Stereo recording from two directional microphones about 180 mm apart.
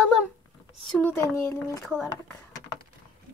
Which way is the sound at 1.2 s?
15° left (ahead or behind).